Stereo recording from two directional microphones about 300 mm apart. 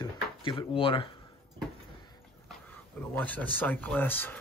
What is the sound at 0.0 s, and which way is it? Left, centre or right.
Drawer open or close, centre.